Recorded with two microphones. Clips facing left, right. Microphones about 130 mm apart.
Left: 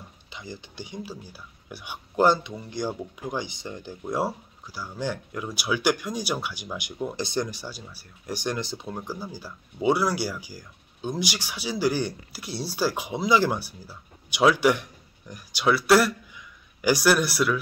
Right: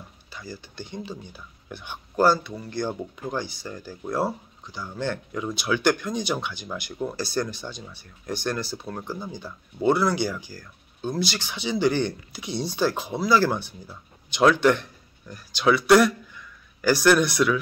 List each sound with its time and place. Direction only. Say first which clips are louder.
0.3 s speech: right 1 dB; 20° left (ahead or behind)
4.6 s speech: right 1 dB; 5° left (ahead or behind)
15.6 s a man's voice: right 2 dB; 5° left (ahead or behind)